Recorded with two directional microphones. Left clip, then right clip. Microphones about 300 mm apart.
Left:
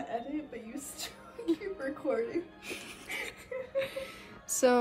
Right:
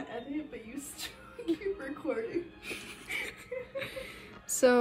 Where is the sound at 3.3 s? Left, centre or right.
Centre.